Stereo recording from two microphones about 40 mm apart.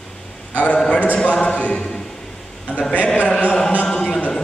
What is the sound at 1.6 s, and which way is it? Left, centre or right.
Choir, left.